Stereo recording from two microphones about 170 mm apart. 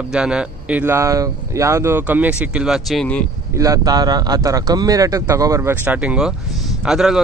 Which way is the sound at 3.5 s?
20° right (ahead or behind).